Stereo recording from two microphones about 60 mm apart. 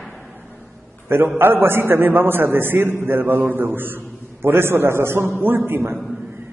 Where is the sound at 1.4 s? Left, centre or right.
Right.